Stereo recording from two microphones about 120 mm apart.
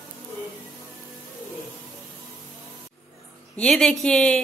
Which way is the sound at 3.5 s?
5° left (ahead or behind).